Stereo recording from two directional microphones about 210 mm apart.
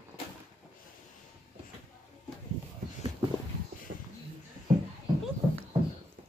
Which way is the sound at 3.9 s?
55° right (ahead or behind).